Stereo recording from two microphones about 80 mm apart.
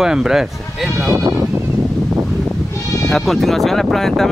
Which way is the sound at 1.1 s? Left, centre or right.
Right.